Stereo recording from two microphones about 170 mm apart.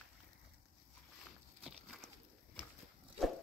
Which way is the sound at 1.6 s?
Centre (ahead or behind).